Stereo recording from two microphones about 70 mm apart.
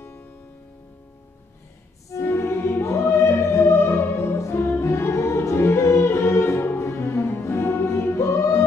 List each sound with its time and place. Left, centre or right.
2.2 s music: left